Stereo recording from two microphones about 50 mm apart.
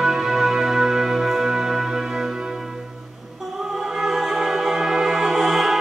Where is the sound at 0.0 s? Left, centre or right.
Centre.